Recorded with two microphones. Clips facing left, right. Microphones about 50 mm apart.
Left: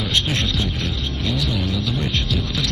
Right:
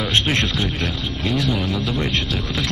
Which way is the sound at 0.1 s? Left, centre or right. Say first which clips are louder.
Right 2 dB; right.